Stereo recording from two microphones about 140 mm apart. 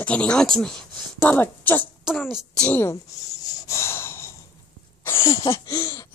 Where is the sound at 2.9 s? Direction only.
25° left (ahead or behind).